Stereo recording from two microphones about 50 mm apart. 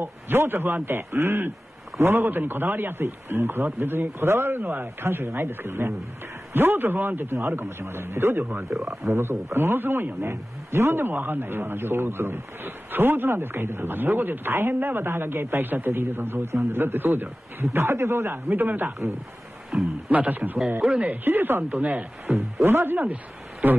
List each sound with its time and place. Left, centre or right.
0.0 s a man's voice: right
8.8 s speech: right
10.3 s a man's voice: right
17.7 s a man's voice: right
19.7 s a man's voice: right
20.1 s a man's voice: right
22.2 s a man's voice: right